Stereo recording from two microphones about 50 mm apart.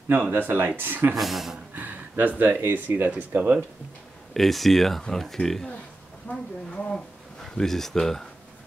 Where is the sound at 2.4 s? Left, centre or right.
Right.